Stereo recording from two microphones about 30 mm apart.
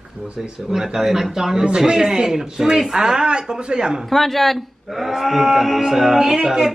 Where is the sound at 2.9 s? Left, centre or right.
Right.